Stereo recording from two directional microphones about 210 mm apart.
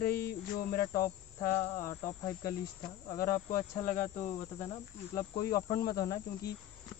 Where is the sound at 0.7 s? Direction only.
45° left (ahead or behind).